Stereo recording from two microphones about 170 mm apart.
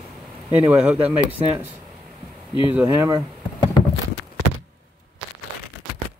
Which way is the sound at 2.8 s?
20° right (ahead or behind).